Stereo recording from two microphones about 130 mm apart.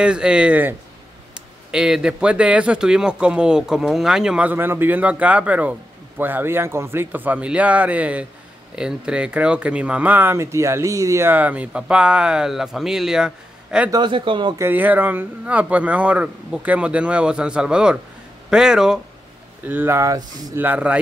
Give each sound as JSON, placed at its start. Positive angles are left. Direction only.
{"t": 0.0, "sound": "speech", "side_deg": -5}
{"t": 13.8, "sound": "speech", "side_deg": -35}
{"t": 14.6, "sound": "speech", "side_deg": -15}
{"t": 19.6, "sound": "speech", "side_deg": -15}
{"t": 20.5, "sound": "speech", "side_deg": -15}